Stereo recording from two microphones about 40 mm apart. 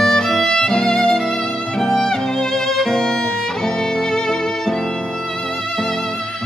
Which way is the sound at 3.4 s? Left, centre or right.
Centre.